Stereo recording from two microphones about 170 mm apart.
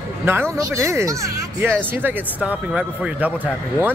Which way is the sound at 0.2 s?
15° right (ahead or behind).